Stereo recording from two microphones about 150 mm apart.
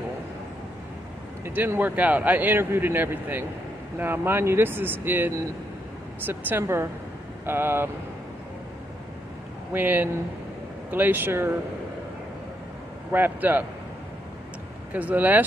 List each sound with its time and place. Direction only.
1.4 s speech: 15° right (ahead or behind)
9.7 s speech: 10° right (ahead or behind)
13.1 s speech: 10° right (ahead or behind)
14.9 s speech: 10° right (ahead or behind)